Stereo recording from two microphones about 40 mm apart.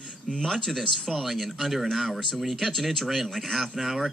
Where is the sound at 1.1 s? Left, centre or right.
Centre.